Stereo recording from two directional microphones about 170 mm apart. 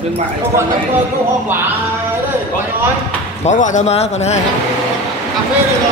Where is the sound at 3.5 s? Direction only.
45° left (ahead or behind).